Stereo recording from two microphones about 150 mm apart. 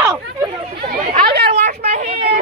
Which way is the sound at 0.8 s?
80° right.